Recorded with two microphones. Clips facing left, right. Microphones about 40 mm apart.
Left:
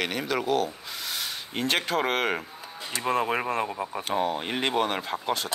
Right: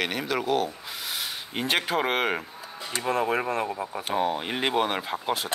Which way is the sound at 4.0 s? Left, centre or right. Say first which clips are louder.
Right 1 dB; centre.